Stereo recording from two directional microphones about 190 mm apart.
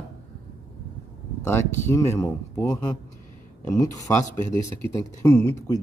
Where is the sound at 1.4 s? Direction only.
10° left (ahead or behind).